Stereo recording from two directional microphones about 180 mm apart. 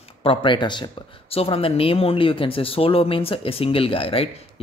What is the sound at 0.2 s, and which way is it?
Speech, 30° left (ahead or behind).